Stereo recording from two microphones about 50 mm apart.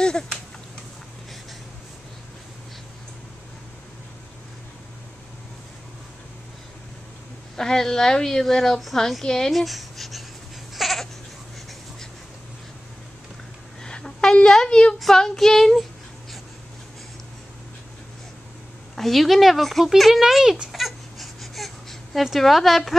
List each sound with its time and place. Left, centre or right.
7.5 s a woman's voice: centre
9.5 s speech: centre
10.7 s goat: centre
13.8 s a sound: centre
15.0 s speech: centre
18.9 s speech: centre
20.7 s baby cry: centre